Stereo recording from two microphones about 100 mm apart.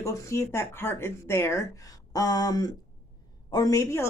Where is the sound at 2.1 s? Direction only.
40° left (ahead or behind).